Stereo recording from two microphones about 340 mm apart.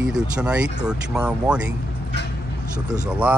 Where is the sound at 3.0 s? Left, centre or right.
Centre.